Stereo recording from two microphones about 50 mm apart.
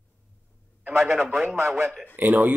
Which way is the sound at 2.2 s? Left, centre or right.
Right.